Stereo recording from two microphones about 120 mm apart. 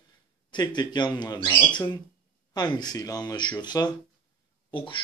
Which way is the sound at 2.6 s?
35° left (ahead or behind).